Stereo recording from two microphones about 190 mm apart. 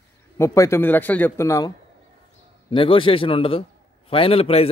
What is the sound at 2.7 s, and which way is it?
A man's voice, 25° left (ahead or behind).